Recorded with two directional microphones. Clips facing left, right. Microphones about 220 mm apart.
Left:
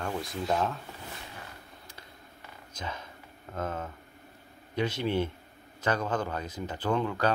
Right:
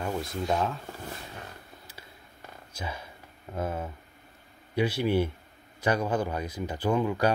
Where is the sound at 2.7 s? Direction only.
10° right (ahead or behind).